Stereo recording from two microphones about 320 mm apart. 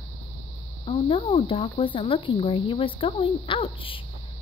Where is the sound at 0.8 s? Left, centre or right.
Centre.